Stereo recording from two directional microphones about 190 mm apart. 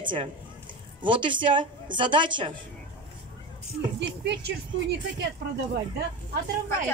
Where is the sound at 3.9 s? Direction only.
65° right (ahead or behind).